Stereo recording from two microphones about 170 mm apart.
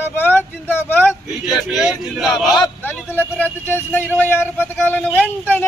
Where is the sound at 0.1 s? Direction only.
10° left (ahead or behind).